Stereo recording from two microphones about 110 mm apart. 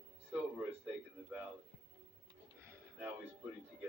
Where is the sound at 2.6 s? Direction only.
25° right (ahead or behind).